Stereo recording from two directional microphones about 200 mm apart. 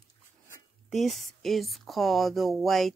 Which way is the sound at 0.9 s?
Centre (ahead or behind).